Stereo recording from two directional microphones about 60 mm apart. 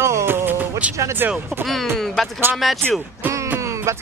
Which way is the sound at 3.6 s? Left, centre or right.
Right.